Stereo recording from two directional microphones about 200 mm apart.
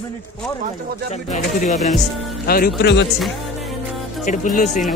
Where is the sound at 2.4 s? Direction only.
45° left (ahead or behind).